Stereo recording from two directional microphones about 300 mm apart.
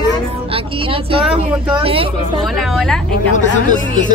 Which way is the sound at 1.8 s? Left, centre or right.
Centre.